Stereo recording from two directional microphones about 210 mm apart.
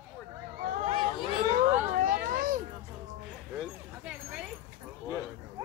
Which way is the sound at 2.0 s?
40° right (ahead or behind).